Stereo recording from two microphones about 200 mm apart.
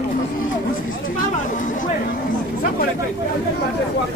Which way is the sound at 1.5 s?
40° left (ahead or behind).